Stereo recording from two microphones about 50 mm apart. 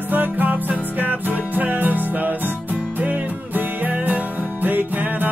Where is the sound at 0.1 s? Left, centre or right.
Right.